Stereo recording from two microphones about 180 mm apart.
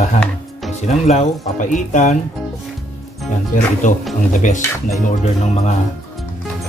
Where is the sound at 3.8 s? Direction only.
45° left (ahead or behind).